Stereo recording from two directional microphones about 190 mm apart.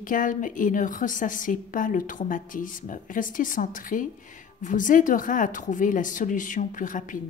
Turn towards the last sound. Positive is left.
turn(degrees=45)  # may be behind; listen again after turning